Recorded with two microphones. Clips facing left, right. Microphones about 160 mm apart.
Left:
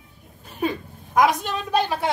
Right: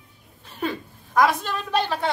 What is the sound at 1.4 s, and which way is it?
Speech, 15° left (ahead or behind).